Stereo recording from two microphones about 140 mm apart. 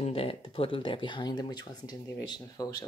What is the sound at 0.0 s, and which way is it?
Speech, 45° left (ahead or behind).